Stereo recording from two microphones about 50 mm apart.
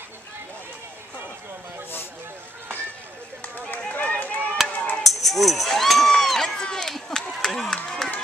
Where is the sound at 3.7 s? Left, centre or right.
Left.